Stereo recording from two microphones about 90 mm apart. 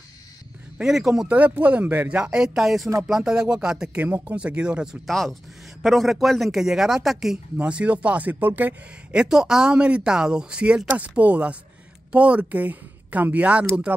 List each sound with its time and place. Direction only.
0.7 s a man's voice: 5° right (ahead or behind)
1.3 s speech: 15° right (ahead or behind)
5.0 s a man's voice: 5° left (ahead or behind); by 14.0 s 20° right (ahead or behind)